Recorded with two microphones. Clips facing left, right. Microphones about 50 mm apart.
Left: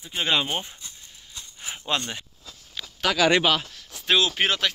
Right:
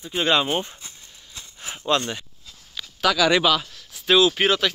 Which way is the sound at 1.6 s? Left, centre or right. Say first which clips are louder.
Right 1 dB; centre.